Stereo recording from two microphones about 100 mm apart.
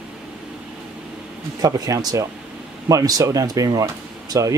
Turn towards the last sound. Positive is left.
turn(degrees=-35)  # may be behind; listen again after turning